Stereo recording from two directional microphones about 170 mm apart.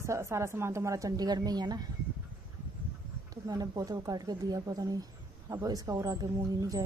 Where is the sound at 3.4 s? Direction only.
20° right (ahead or behind).